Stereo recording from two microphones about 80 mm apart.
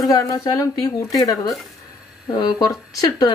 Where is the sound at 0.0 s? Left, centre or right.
Left.